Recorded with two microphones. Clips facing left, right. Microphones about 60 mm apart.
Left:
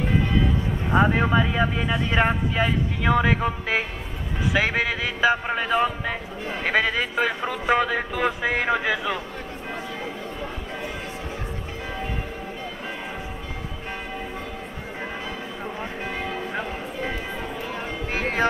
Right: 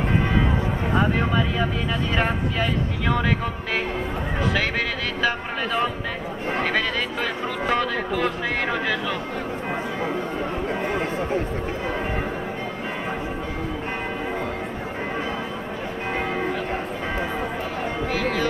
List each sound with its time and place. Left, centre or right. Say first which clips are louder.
0.9 s speech: left 3 dB; centre
18.1 s music: left 2 dB; left